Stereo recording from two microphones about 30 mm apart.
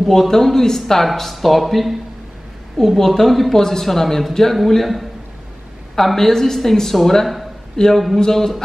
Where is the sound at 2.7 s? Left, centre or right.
Centre.